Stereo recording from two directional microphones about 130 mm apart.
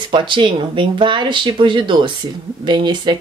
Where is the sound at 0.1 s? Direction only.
40° right (ahead or behind).